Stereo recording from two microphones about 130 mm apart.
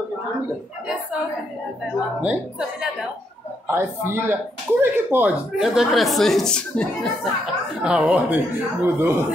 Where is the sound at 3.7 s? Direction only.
20° right (ahead or behind); by 6.8 s 5° left (ahead or behind).